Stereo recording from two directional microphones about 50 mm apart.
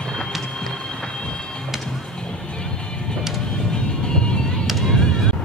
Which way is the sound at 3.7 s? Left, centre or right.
Centre.